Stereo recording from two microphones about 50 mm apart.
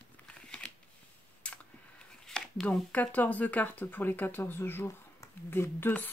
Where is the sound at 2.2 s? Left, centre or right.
Centre.